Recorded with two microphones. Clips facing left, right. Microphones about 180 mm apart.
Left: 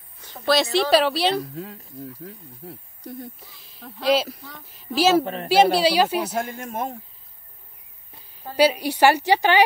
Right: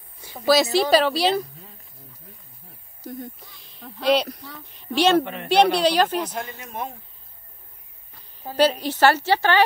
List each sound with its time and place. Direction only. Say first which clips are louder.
0.2 s speech: right 2 dB; 5° right (ahead or behind)
2.3 s speech: left 12 dB; 90° left
3.0 s speech: right 3 dB; centre (ahead or behind)
5.2 s a woman's voice: left 3 dB; 35° left (ahead or behind)
5.5 s a woman's voice: left 1 dB; 5° left (ahead or behind)
6.3 s speech: left 5 dB; 50° left (ahead or behind)
8.5 s a woman's voice: left 1 dB; 10° left (ahead or behind)